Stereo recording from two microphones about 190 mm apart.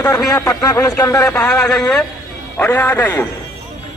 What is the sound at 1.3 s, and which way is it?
A man's voice, 5° left (ahead or behind).